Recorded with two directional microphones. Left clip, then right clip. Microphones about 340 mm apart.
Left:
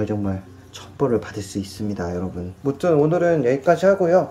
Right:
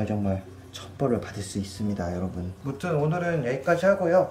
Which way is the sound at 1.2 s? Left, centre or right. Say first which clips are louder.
Left 5 dB; centre.